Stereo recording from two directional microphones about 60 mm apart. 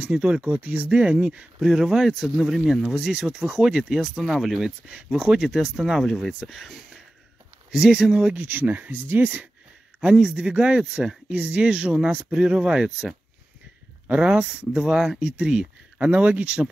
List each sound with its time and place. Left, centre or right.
0.0 s speech: right; by 7.0 s centre
7.7 s speech: centre
8.5 s speech: right
9.9 s speech: centre
14.0 s speech: centre